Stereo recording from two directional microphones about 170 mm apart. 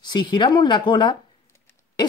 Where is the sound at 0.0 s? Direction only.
25° left (ahead or behind).